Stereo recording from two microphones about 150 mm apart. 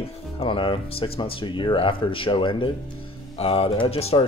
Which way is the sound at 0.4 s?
35° left (ahead or behind).